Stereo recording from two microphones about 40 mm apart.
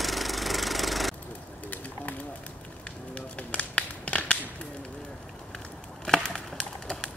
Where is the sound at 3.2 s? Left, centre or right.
Left.